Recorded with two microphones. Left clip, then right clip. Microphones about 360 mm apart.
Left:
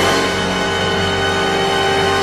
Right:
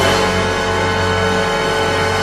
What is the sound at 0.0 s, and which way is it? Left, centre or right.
Music, centre.